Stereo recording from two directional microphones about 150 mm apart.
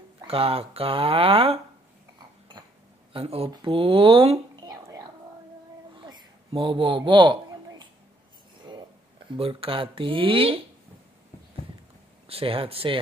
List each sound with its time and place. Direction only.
0.2 s speech: 40° right (ahead or behind)
3.1 s speech: 40° right (ahead or behind)
4.6 s whispering: 25° right (ahead or behind)
5.9 s a sound: 30° right (ahead or behind)
9.4 s speech: 35° right (ahead or behind)
12.3 s speech: 40° right (ahead or behind)